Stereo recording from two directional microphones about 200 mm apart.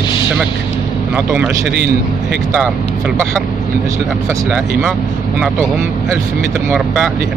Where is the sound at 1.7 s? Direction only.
55° right (ahead or behind).